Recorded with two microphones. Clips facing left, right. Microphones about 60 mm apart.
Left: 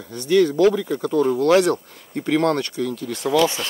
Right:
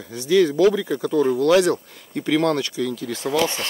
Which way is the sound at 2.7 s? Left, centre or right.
Right.